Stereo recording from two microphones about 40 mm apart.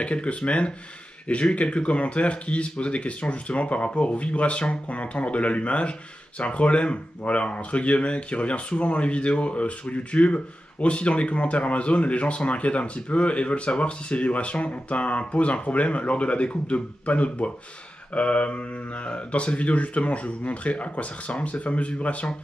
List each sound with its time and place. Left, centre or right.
0.0 s speech: left